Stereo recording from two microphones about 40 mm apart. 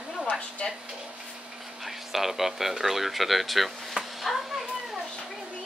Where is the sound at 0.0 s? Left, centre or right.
Right.